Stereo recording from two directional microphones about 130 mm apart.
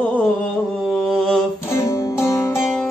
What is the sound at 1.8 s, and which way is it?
Music, 25° left (ahead or behind).